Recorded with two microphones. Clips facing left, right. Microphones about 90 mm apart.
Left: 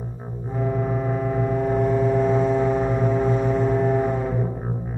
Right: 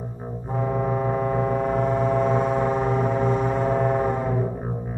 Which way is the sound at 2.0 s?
70° right (ahead or behind).